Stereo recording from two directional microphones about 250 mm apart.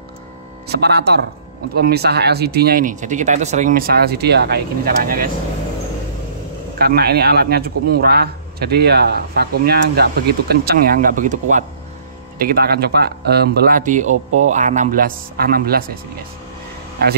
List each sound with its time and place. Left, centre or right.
0.7 s a man's voice: right
6.8 s a man's voice: right